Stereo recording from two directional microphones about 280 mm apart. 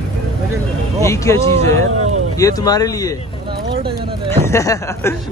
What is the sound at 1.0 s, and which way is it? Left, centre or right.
Speech, centre.